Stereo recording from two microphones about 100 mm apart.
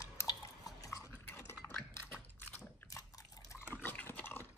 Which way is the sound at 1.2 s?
25° left (ahead or behind).